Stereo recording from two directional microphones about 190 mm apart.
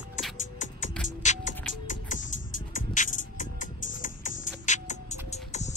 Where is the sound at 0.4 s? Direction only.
40° left (ahead or behind).